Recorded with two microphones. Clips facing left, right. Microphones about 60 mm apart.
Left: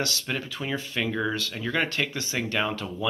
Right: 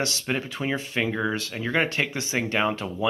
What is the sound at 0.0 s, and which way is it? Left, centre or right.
Speech, right.